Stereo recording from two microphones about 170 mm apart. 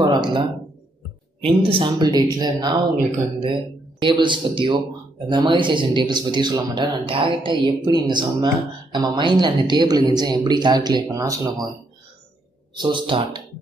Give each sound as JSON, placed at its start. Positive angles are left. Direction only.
{"t": 0.0, "sound": "speech", "side_deg": -25}
{"t": 4.0, "sound": "speech", "side_deg": -30}
{"t": 12.7, "sound": "speech", "side_deg": -30}